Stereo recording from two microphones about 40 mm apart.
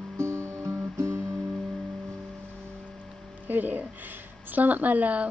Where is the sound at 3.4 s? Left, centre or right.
Right.